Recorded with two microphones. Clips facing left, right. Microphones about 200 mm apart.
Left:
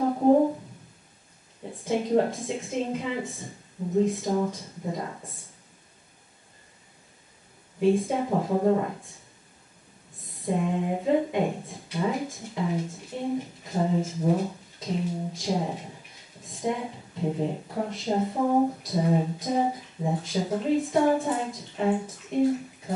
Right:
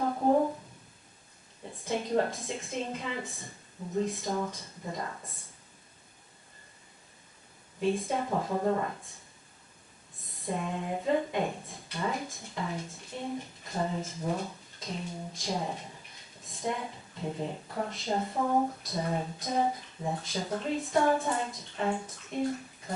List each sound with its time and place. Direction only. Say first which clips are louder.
0.0 s a sound: left 6 dB; 20° left (ahead or behind)
1.9 s speech: left 5 dB; 5° left (ahead or behind)
4.4 s speech: left 7 dB; 20° left (ahead or behind)
7.8 s speech: left 6 dB; 10° left (ahead or behind)
10.4 s a woman's voice: left 7 dB; 10° left (ahead or behind)
18.3 s speech: left 5 dB; 15° left (ahead or behind)
18.8 s speech: left 7 dB; 5° left (ahead or behind)
19.5 s speech: left 3 dB; 15° left (ahead or behind)